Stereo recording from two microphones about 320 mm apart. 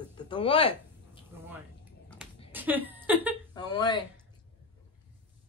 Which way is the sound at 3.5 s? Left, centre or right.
Centre.